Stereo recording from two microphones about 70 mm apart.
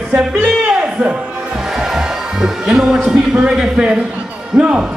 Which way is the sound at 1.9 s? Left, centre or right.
Centre.